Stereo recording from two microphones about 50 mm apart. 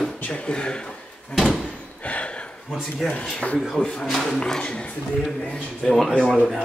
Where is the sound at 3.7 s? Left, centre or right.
Centre.